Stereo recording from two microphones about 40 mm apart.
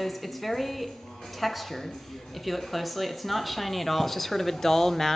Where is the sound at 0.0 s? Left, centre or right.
Centre.